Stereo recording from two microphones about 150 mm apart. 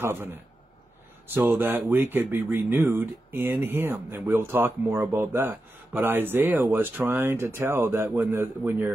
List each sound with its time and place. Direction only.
0.0 s speech: 15° right (ahead or behind)